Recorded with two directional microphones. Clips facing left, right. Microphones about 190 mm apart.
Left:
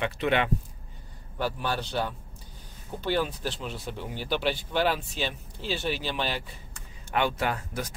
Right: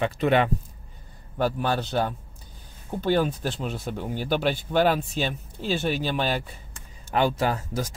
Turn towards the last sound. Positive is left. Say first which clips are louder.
# right 4 dB
turn(degrees=-35)  # may be behind; listen again after turning